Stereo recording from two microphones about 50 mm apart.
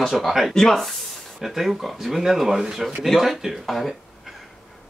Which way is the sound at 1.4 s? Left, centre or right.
Centre.